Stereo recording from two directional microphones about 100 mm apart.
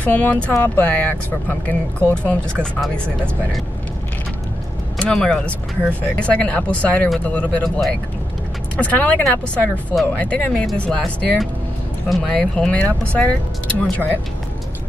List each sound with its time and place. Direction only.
0.0 s speech: 15° left (ahead or behind)
4.9 s speech: 10° left (ahead or behind)
10.2 s speech: 15° left (ahead or behind)